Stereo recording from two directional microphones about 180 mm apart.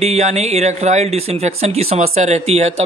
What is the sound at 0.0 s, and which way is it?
Speech, 35° right (ahead or behind).